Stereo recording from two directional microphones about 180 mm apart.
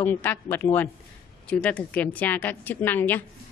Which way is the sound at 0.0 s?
10° left (ahead or behind).